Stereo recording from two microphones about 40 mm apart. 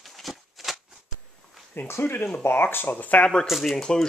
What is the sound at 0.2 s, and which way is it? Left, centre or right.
Shuffling cards, centre.